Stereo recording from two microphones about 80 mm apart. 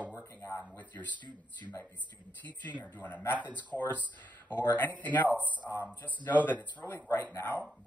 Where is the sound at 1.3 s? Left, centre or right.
Right.